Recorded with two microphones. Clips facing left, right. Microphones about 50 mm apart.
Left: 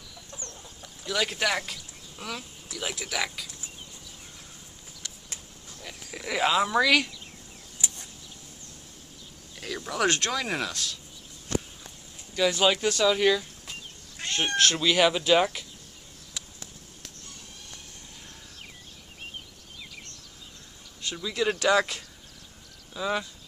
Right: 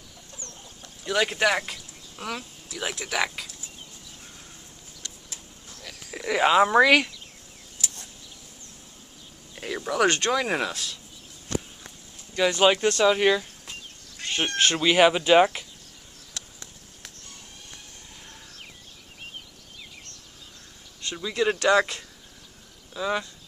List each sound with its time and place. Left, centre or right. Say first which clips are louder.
1.0 s speech: right 4 dB; centre
5.8 s a sound: left 1 dB; centre
6.1 s speech: right 4 dB; centre
6.5 s speech: right 5 dB; right
7.8 s a sound: even; left
9.6 s a sound: right 3 dB; right
9.8 s speech: right 4 dB; centre
10.3 s speech: right 4 dB; centre
10.7 s speech: right 1 dB; centre
12.5 s speech: right 4 dB; centre
13.0 s speech: right 2 dB; right
14.2 s cat: right 1 dB; left
14.6 s speech: right 4 dB; centre
21.1 s speech: right 3 dB; centre